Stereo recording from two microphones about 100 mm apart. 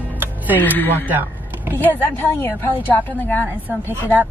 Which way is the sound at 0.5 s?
20° left (ahead or behind).